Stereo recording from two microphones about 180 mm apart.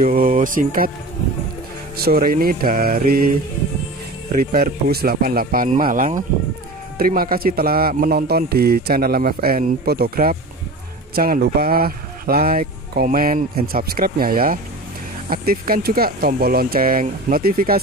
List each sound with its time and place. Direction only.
0.0 s speech: 50° right (ahead or behind)
2.0 s speech: 55° right (ahead or behind)
4.4 s speech: 55° right (ahead or behind)